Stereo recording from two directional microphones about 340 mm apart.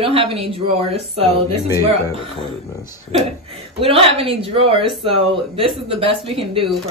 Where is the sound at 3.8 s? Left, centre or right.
Centre.